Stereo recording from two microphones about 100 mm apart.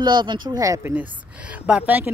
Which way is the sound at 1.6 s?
15° right (ahead or behind).